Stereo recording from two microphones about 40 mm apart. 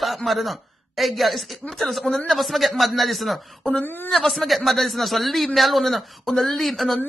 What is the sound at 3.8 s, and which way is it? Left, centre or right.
Speech, left.